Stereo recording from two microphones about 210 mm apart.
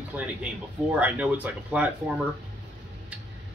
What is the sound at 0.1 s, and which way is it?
Speech, 10° right (ahead or behind).